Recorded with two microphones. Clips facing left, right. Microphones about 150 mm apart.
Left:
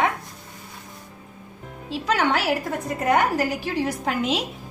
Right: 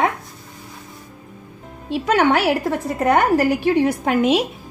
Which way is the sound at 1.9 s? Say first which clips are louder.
Right 6 dB; 55° right (ahead or behind).